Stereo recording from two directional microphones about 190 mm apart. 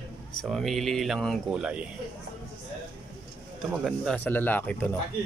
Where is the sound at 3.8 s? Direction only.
5° left (ahead or behind).